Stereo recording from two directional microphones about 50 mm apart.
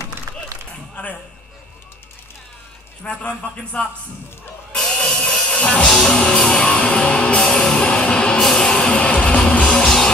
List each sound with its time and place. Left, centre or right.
3.0 s a man's voice: left
4.7 s music: centre
5.9 s music: centre; by 9.8 s left